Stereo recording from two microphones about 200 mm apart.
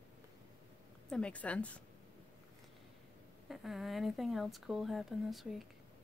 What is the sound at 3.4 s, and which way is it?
Speech, centre (ahead or behind).